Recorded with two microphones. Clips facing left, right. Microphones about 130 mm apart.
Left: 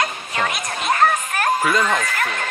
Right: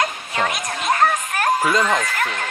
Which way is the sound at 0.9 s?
10° right (ahead or behind).